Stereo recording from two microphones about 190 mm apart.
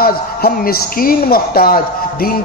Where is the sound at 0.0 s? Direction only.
50° left (ahead or behind).